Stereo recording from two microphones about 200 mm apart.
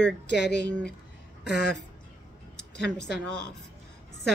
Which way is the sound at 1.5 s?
55° left (ahead or behind).